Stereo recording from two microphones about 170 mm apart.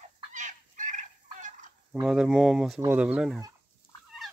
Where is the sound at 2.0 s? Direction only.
5° right (ahead or behind).